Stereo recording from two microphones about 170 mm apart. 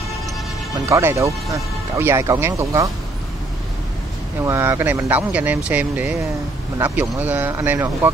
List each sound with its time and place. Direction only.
0.8 s speech: 15° right (ahead or behind)
4.4 s speech: 15° right (ahead or behind)